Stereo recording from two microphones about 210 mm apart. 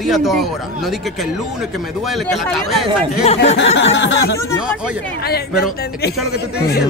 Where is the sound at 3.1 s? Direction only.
30° left (ahead or behind).